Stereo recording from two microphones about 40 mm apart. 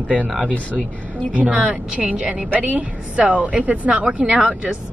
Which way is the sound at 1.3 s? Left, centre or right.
Right.